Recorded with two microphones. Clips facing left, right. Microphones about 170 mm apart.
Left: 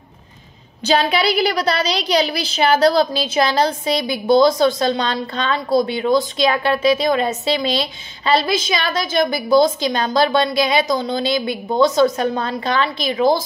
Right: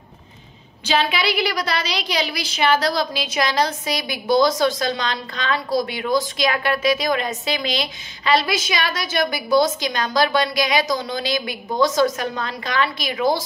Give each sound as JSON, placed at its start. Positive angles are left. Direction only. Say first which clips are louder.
{"t": 0.8, "sound": "a woman's voice", "louder": "left 4 dB", "side_deg": 35}